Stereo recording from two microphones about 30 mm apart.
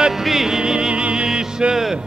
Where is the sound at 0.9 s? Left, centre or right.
Right.